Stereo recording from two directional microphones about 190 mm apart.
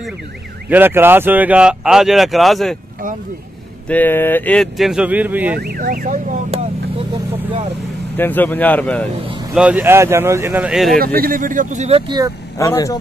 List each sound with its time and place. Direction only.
0.7 s speech: 10° right (ahead or behind)
3.9 s speech: 10° left (ahead or behind); by 5.6 s 10° right (ahead or behind)
5.6 s speech: 50° right (ahead or behind)
8.2 s speech: 10° left (ahead or behind)
9.5 s speech: 5° right (ahead or behind)
11.1 s speech: 50° right (ahead or behind)
12.5 s speech: 15° left (ahead or behind)